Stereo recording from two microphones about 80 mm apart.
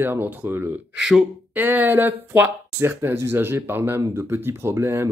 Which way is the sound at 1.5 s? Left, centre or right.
Right.